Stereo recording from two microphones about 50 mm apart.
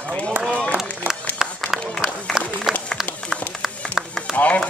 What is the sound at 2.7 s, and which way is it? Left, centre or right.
Run, centre.